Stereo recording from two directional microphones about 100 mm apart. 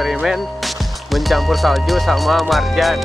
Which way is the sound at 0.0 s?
5° right (ahead or behind).